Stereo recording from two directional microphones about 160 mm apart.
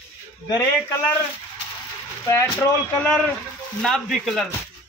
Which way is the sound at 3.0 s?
5° left (ahead or behind).